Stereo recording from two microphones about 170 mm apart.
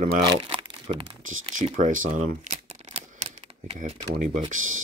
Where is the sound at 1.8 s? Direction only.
50° right (ahead or behind).